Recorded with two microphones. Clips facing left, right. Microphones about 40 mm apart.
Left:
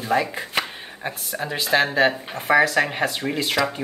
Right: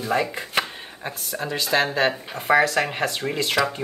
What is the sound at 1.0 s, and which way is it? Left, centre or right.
Speech, centre.